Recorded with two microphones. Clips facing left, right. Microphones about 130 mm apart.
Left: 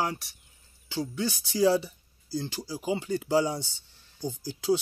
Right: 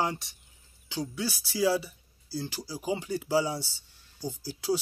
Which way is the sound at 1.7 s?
5° right (ahead or behind).